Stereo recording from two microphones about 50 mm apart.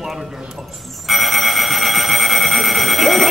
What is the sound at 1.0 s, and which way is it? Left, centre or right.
Alarm, centre.